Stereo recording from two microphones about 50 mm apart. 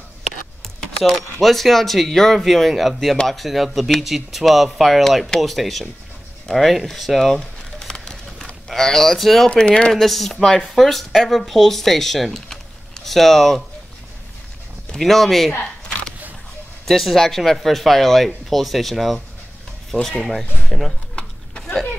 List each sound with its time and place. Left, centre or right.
1.0 s speech: centre
7.9 s a sound: centre
8.6 s speech: centre
9.5 s speech: centre
9.9 s speech: centre
15.0 s speech: centre
16.8 s speech: centre
21.2 s a sound: centre